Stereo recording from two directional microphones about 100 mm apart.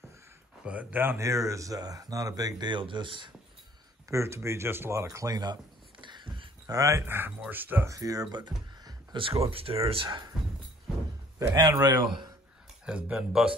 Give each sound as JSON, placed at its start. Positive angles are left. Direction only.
{"t": 0.7, "sound": "speech", "side_deg": -15}
{"t": 4.1, "sound": "a man's voice", "side_deg": -30}
{"t": 6.7, "sound": "speech", "side_deg": -30}
{"t": 7.9, "sound": "speech", "side_deg": -35}
{"t": 11.5, "sound": "speech", "side_deg": -40}
{"t": 12.8, "sound": "speech", "side_deg": -5}